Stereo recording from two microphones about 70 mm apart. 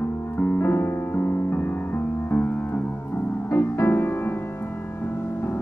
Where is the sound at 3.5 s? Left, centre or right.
Left.